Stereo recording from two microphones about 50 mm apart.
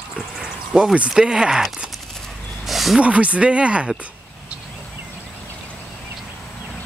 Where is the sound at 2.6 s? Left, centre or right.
Centre.